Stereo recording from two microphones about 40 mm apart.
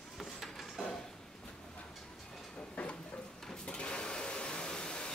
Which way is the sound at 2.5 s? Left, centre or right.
Left.